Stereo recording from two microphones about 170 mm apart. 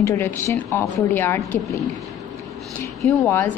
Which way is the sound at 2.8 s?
15° left (ahead or behind).